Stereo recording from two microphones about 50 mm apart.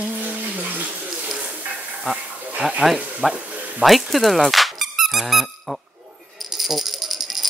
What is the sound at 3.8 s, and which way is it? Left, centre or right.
Squeak, centre.